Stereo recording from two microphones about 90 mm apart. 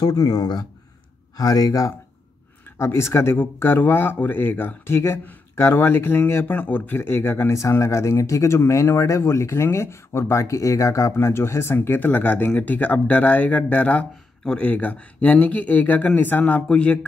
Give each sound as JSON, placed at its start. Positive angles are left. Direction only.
{"t": 0.0, "sound": "speech", "side_deg": 45}